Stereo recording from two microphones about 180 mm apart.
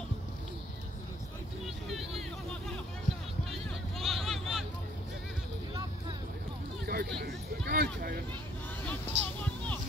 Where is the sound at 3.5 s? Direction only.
Centre (ahead or behind).